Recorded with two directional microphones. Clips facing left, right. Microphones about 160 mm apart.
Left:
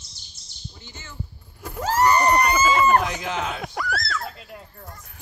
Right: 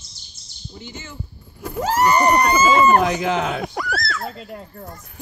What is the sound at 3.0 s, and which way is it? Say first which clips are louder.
Speech: right 7 dB; 60° right (ahead or behind).